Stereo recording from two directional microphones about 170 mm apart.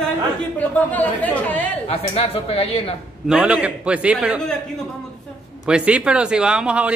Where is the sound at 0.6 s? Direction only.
10° left (ahead or behind).